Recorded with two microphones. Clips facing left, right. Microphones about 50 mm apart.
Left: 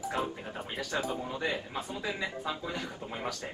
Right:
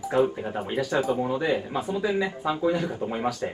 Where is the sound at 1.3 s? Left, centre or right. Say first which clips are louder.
Right 8 dB; centre.